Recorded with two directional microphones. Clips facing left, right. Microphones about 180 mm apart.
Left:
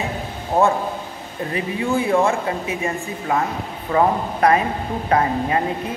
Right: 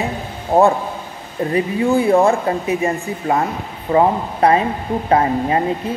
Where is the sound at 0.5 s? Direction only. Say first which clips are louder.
Right 4 dB; 35° right (ahead or behind).